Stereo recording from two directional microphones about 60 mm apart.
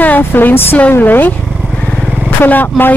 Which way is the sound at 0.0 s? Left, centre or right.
Left.